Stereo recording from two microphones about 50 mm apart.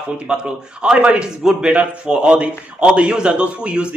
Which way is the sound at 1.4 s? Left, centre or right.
Centre.